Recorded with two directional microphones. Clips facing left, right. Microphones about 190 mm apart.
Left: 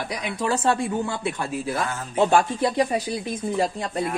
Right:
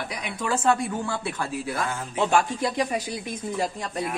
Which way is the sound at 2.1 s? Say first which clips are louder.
Left 4 dB; 35° left (ahead or behind).